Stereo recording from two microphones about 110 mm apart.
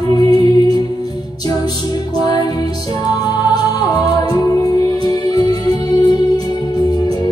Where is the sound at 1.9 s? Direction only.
35° left (ahead or behind).